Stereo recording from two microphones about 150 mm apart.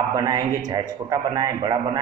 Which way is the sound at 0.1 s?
25° right (ahead or behind).